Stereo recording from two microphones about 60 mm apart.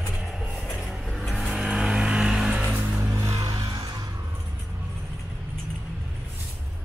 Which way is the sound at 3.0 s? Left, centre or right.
Right.